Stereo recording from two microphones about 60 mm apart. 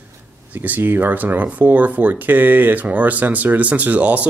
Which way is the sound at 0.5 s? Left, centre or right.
Right.